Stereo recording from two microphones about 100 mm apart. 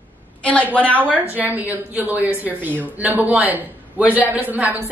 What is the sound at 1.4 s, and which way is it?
A man's voice, 15° right (ahead or behind).